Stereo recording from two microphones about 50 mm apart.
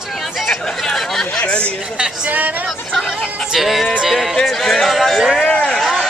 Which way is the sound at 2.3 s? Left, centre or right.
Right.